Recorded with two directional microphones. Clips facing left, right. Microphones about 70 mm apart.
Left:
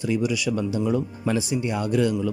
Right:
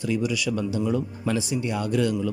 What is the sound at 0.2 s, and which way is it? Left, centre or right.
Speech, centre.